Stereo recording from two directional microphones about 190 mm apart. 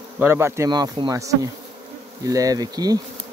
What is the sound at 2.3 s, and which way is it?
Speech, 20° right (ahead or behind).